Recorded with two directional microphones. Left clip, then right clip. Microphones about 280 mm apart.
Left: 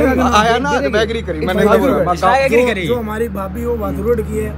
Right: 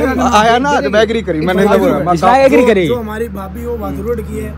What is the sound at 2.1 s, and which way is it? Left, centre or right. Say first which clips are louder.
Speech: right 6 dB; centre.